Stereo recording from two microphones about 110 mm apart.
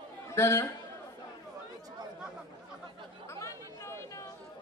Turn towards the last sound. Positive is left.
turn(degrees=25)  # may be behind; listen again after turning